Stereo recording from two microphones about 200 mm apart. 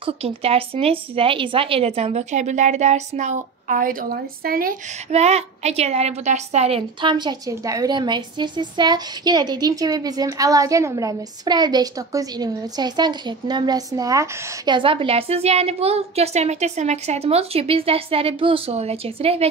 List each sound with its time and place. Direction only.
0.0 s speech: 30° right (ahead or behind); by 4.7 s 45° right (ahead or behind)
5.1 s a woman's voice: 35° right (ahead or behind)